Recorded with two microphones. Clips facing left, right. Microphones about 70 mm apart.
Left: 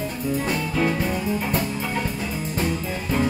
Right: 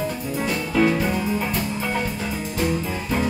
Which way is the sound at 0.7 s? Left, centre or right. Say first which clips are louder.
Right 5 dB; right.